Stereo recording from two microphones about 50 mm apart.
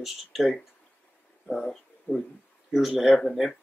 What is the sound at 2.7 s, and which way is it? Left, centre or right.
Speech, centre.